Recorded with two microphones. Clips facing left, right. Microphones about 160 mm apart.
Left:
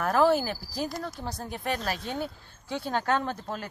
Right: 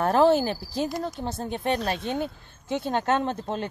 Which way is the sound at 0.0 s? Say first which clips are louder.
Right 3 dB; 25° right (ahead or behind).